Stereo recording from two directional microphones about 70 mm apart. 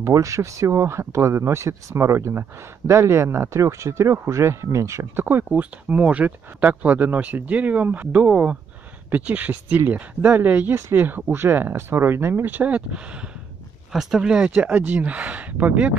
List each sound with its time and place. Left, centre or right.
0.0 s speech: right
5.1 s speech: right; by 14.5 s centre
14.5 s speech: right